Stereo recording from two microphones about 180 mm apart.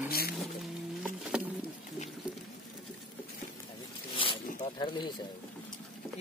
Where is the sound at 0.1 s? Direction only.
55° left (ahead or behind).